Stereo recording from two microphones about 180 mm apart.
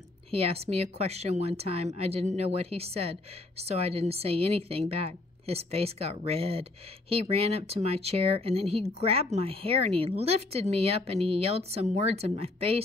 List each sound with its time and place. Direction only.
0.3 s a woman's voice: 35° right (ahead or behind)